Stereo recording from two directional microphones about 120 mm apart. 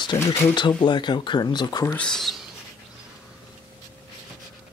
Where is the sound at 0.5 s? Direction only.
40° left (ahead or behind).